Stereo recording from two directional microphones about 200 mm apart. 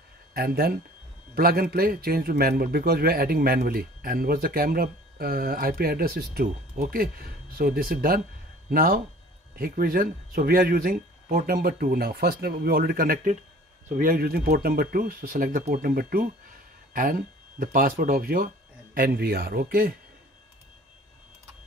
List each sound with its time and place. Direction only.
0.3 s a man's voice: 50° right (ahead or behind)